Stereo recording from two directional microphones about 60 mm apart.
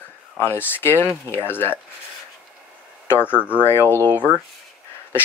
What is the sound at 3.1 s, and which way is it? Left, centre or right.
Speech, left.